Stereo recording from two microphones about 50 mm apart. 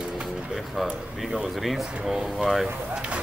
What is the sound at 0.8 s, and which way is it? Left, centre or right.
Speech, centre.